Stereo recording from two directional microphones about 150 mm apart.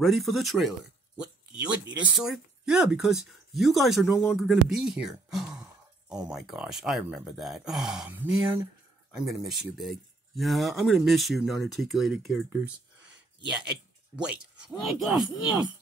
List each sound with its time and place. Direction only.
0.0 s speech: centre (ahead or behind)
9.2 s speech: centre (ahead or behind)
14.1 s speech: 5° right (ahead or behind)